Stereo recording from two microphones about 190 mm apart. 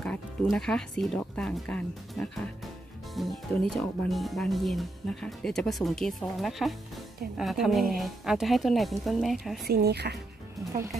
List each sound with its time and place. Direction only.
0.0 s speech: 5° left (ahead or behind)
9.7 s speech: 55° right (ahead or behind)